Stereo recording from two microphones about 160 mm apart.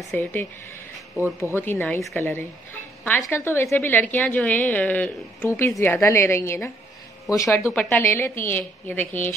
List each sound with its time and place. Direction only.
0.1 s a woman's voice: 10° left (ahead or behind)